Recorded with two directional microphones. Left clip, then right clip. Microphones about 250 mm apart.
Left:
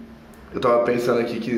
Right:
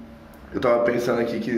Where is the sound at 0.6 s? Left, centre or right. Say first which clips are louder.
Left 1 dB; centre.